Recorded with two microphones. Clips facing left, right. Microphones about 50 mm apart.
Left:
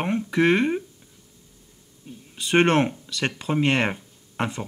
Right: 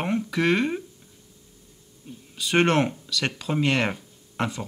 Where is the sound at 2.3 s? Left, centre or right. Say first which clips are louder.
Left 2 dB; centre.